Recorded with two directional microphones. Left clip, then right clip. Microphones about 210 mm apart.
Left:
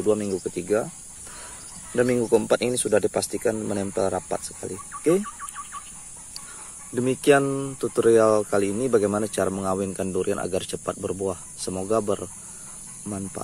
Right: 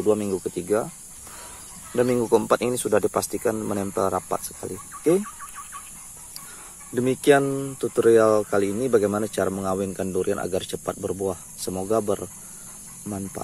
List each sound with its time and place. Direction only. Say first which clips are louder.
0.0 s speech: right 1 dB; 10° right (ahead or behind)
2.0 s speech: even; 5° right (ahead or behind)
7.0 s speech: right 1 dB; 10° right (ahead or behind)